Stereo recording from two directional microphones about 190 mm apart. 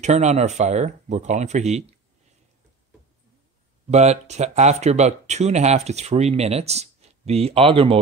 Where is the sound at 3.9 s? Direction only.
35° right (ahead or behind).